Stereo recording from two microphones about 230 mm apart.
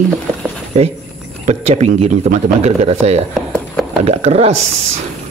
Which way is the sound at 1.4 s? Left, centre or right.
Right.